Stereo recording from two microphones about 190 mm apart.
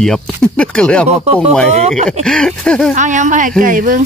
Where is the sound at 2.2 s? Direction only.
5° left (ahead or behind).